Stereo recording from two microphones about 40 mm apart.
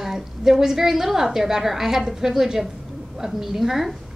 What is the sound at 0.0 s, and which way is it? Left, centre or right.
A woman's voice, centre.